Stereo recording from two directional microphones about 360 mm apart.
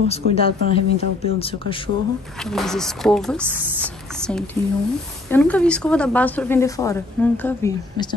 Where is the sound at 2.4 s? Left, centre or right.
Centre.